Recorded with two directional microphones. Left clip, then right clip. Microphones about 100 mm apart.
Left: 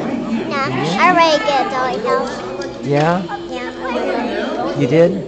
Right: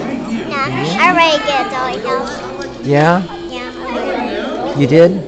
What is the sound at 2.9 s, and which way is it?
Speech, 35° right (ahead or behind).